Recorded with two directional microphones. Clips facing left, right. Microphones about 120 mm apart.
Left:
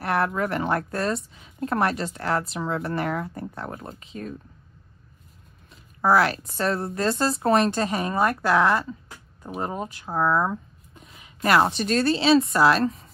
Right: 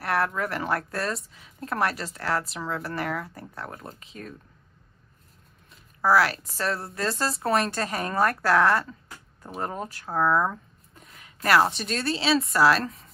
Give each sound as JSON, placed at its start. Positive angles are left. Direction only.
{"t": 0.0, "sound": "a woman's voice", "side_deg": 30}
{"t": 5.9, "sound": "a woman's voice", "side_deg": 25}
{"t": 11.1, "sound": "a sound", "side_deg": 20}
{"t": 11.6, "sound": "speech", "side_deg": 0}
{"t": 12.2, "sound": "speech", "side_deg": 30}